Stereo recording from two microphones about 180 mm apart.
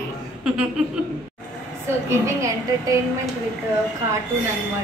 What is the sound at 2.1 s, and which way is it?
Speech, 15° right (ahead or behind).